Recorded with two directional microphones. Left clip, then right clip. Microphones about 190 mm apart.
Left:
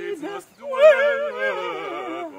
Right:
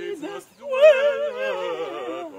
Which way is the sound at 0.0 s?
5° right (ahead or behind).